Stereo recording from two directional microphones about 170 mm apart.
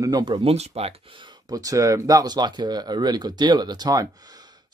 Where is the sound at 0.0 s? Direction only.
25° right (ahead or behind).